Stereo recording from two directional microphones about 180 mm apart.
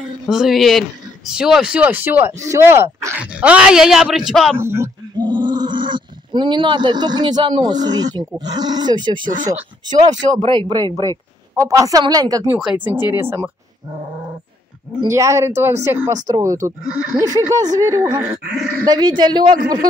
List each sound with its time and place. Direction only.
0.3 s speech: centre (ahead or behind)
4.6 s speech: 15° right (ahead or behind)
12.5 s speech: 5° right (ahead or behind)
15.0 s speech: 15° right (ahead or behind)
17.2 s speech: 20° right (ahead or behind)
18.4 s speech: 60° right (ahead or behind)
18.9 s speech: 25° right (ahead or behind)